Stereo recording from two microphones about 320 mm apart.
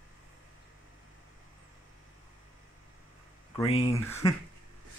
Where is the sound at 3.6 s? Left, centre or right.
Centre.